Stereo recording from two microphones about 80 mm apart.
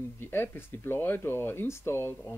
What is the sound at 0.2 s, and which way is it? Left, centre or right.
Speech, left.